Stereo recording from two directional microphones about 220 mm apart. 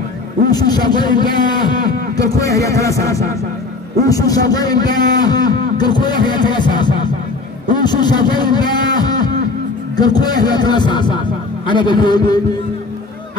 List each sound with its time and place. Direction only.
0.5 s a man's voice: 20° left (ahead or behind)
4.0 s a man's voice: 15° left (ahead or behind)